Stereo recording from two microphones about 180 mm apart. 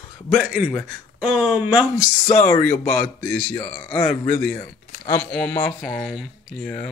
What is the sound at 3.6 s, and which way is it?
Speech, 25° left (ahead or behind).